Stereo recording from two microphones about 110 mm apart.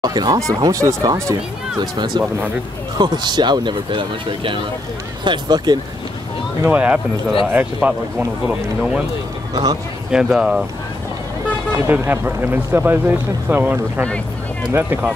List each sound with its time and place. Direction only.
0.0 s speech: 40° right (ahead or behind)
6.6 s a man's voice: 15° right (ahead or behind)
9.5 s speech: 35° right (ahead or behind)
10.1 s speech: 5° right (ahead or behind)
11.7 s speech: 25° right (ahead or behind)